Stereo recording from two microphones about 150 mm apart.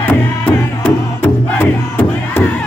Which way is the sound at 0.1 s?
10° left (ahead or behind).